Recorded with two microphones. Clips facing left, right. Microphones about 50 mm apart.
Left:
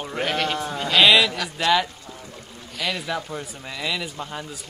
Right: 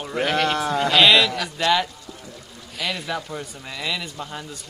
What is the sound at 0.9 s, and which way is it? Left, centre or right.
Speech, centre.